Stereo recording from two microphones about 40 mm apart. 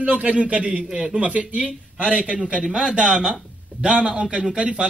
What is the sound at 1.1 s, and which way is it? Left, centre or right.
A man's voice, right.